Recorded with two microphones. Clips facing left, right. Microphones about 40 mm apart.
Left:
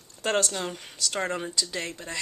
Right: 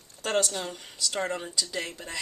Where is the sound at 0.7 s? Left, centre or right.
Left.